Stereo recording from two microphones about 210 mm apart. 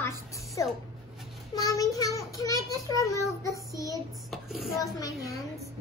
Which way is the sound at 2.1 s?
15° left (ahead or behind).